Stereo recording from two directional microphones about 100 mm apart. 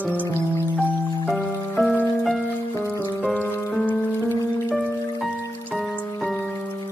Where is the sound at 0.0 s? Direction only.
15° left (ahead or behind).